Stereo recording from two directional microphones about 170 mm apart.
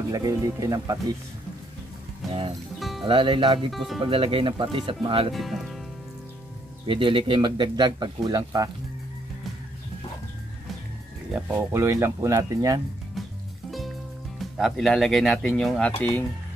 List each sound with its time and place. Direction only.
0.1 s speech: 20° right (ahead or behind)
2.8 s music: centre (ahead or behind)
3.1 s speech: 30° right (ahead or behind)
3.7 s speech: centre (ahead or behind)
4.0 s speech: 30° right (ahead or behind)
5.3 s speech: centre (ahead or behind)
6.9 s speech: 30° right (ahead or behind)
11.4 s speech: 15° right (ahead or behind)
13.7 s music: centre (ahead or behind)
14.4 s speech: centre (ahead or behind)